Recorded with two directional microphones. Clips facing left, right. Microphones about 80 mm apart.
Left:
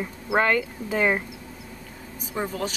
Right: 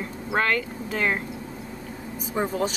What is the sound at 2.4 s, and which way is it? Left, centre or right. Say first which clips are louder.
Speech: right 3 dB; centre.